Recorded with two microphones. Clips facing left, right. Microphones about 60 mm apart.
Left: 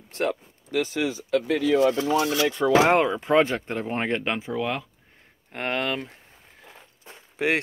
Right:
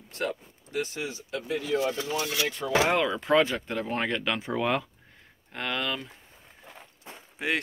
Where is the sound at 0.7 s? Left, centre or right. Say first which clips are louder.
Left 7 dB; left.